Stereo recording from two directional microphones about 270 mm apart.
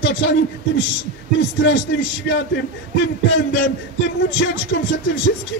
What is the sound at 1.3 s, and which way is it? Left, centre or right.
Speech, left.